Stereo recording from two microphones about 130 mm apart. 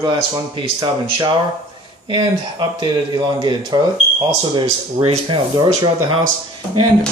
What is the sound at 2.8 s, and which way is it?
Speech, 35° right (ahead or behind).